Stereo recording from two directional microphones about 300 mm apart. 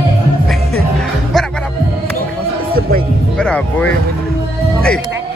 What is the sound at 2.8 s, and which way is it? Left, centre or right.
Music, right.